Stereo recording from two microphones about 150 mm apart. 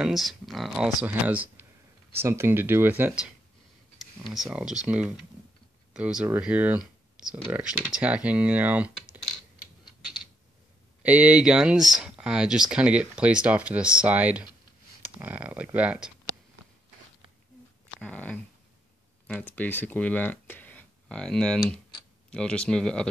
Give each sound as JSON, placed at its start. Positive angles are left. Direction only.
{"t": 0.0, "sound": "speech", "side_deg": 0}
{"t": 1.0, "sound": "speech", "side_deg": -10}
{"t": 4.2, "sound": "speech", "side_deg": 0}
{"t": 11.0, "sound": "speech", "side_deg": -10}
{"t": 18.0, "sound": "speech", "side_deg": 10}